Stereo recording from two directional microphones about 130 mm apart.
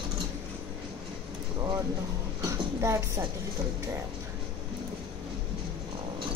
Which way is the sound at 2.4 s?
20° right (ahead or behind).